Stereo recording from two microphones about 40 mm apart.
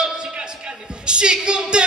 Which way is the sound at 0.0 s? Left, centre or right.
Right.